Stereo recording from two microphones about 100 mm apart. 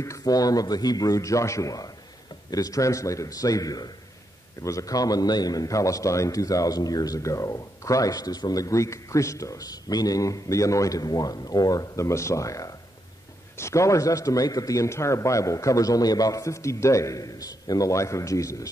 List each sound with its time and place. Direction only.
0.0 s a man's voice: 35° left (ahead or behind)